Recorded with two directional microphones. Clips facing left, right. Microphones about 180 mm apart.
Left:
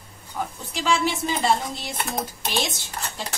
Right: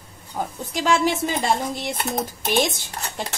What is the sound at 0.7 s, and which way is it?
A woman's voice, 45° right (ahead or behind).